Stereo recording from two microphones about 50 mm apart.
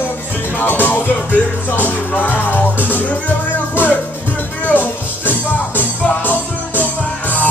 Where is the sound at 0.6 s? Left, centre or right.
Left.